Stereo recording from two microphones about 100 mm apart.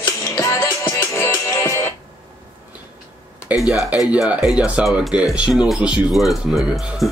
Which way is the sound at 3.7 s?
40° left (ahead or behind).